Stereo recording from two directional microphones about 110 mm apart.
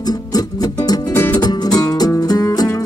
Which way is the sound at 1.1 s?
20° left (ahead or behind).